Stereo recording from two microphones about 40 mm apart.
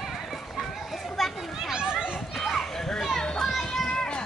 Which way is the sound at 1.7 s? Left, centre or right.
Centre.